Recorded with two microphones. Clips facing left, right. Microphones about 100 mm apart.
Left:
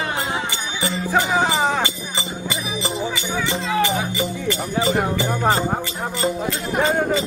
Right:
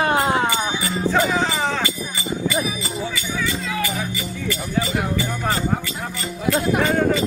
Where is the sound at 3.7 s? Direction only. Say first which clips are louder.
Left 5 dB; 25° left (ahead or behind).